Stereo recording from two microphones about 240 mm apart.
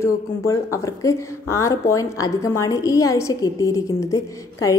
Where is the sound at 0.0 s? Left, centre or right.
Centre.